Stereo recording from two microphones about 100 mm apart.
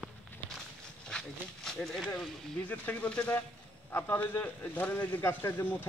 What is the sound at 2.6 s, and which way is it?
A man's voice, 15° left (ahead or behind).